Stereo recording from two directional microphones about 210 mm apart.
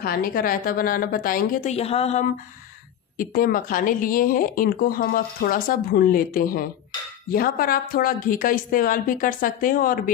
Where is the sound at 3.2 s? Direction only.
40° left (ahead or behind).